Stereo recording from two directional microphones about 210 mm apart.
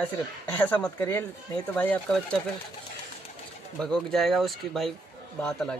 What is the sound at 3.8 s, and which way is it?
Speech, centre (ahead or behind).